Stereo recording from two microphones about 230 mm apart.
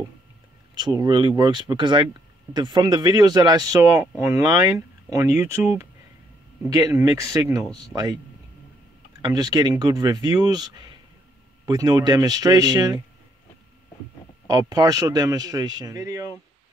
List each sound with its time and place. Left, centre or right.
0.7 s speech: centre
9.2 s speech: centre
14.5 s speech: centre